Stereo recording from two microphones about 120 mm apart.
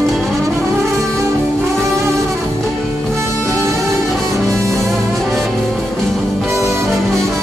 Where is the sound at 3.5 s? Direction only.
25° right (ahead or behind).